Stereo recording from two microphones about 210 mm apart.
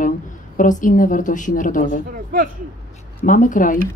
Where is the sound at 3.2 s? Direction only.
40° left (ahead or behind).